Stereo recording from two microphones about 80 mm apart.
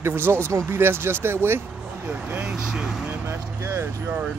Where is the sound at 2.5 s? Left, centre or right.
Centre.